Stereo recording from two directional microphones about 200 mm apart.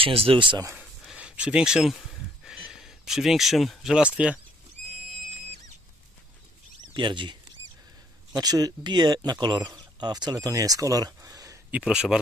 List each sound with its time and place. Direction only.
0.0 s speech: 30° right (ahead or behind)
0.7 s a sound: 5° right (ahead or behind)
6.9 s speech: 25° right (ahead or behind)
11.8 s speech: 5° right (ahead or behind)